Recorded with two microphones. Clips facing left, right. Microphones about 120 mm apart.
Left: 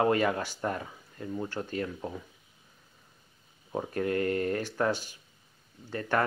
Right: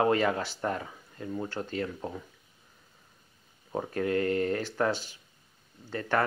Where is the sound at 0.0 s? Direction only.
25° right (ahead or behind).